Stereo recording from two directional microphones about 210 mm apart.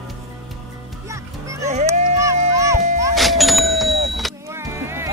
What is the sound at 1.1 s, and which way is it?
Music, 15° right (ahead or behind).